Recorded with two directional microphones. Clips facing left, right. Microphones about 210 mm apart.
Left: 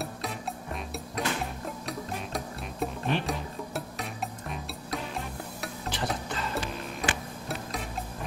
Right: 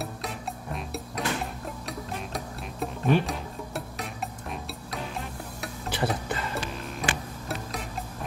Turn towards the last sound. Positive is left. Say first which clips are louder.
# even
turn(degrees=0)  # may be behind; listen again after turning